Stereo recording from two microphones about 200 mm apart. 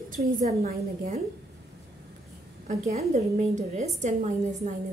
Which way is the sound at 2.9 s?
30° right (ahead or behind).